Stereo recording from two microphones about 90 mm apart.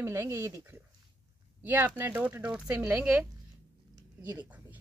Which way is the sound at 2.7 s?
25° right (ahead or behind).